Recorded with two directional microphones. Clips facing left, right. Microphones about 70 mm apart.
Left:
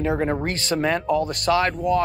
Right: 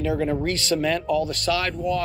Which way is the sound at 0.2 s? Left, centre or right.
Left.